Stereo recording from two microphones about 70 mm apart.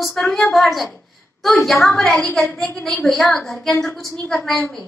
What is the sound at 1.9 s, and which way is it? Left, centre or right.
Speech, left.